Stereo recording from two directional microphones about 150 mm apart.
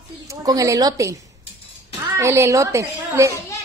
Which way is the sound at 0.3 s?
25° right (ahead or behind).